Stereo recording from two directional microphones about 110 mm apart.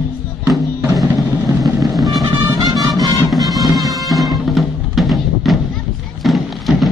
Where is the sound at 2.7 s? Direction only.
35° right (ahead or behind).